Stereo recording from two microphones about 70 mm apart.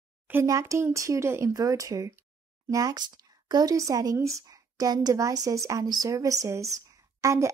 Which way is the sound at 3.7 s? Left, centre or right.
Right.